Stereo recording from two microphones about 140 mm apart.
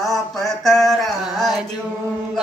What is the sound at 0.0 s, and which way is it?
Mantra, centre (ahead or behind).